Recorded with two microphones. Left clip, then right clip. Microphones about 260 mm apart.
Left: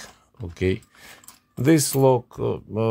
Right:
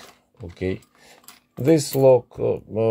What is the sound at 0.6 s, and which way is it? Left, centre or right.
Speech, left.